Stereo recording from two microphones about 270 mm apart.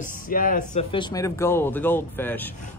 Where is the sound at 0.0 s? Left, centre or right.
Left.